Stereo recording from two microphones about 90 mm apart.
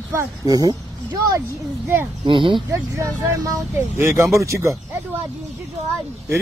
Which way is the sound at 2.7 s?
35° right (ahead or behind).